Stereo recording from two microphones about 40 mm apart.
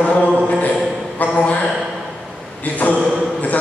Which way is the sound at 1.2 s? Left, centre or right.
Left.